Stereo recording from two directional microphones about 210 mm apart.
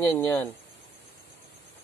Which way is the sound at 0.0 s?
10° left (ahead or behind).